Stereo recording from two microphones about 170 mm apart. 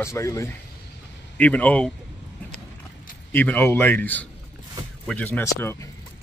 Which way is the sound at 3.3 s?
10° left (ahead or behind).